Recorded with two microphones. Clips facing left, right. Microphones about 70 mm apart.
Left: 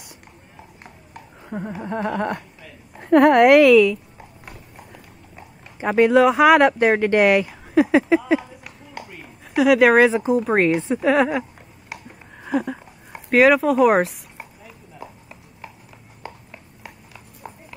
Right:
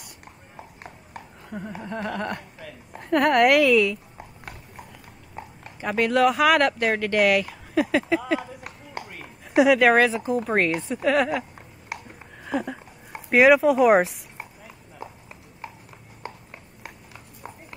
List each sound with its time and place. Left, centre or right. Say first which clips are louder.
1.8 s a woman's voice: left 6 dB; left
5.8 s speech: left 6 dB; left
7.7 s a sound: left 6 dB; centre
9.7 s speech: left 5 dB; centre
10.0 s speech: left 6 dB; left
10.3 s a sound: left 5 dB; centre
12.5 s speech: left 4 dB; centre
13.3 s speech: left 1 dB; centre